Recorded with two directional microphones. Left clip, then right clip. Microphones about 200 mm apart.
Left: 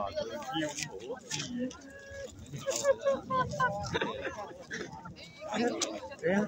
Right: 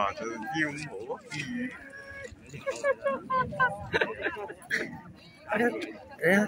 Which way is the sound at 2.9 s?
45° right (ahead or behind).